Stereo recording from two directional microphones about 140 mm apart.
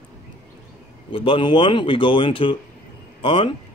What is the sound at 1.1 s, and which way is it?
A man's voice, 40° left (ahead or behind).